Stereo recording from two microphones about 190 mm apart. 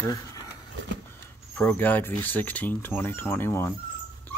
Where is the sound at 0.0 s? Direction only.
20° left (ahead or behind).